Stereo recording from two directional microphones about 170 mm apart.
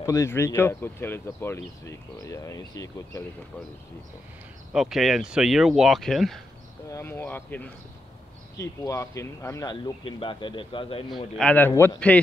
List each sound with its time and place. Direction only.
0.0 s speech: 20° left (ahead or behind)
4.7 s speech: centre (ahead or behind)
6.9 s a man's voice: 15° left (ahead or behind); by 11.1 s 30° left (ahead or behind)
11.3 s speech: 10° left (ahead or behind)